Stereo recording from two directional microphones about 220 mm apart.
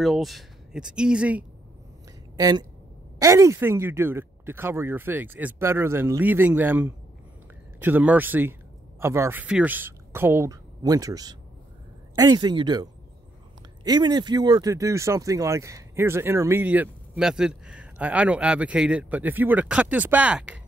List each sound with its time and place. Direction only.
0.0 s speech: centre (ahead or behind)
2.3 s a woman's voice: 15° right (ahead or behind)
13.8 s speech: 20° right (ahead or behind)